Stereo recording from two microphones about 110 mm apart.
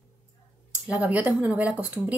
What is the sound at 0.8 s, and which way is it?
Speech, 15° right (ahead or behind).